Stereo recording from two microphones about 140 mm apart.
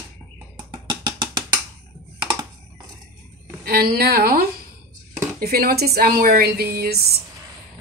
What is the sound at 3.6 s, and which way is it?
Speech, 90° right.